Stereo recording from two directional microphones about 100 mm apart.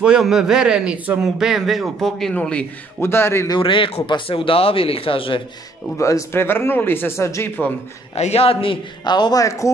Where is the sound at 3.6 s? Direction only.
60° left (ahead or behind).